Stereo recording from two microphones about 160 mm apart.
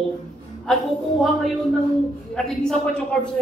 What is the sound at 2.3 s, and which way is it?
A woman's voice, 5° left (ahead or behind).